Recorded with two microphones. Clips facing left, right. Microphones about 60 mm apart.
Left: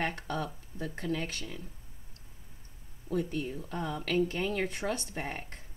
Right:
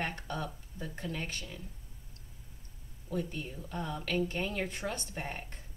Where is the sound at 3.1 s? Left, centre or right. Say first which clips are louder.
Left 4 dB; left.